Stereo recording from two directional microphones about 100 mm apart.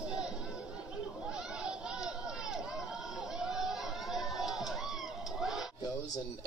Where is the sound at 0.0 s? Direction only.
10° right (ahead or behind).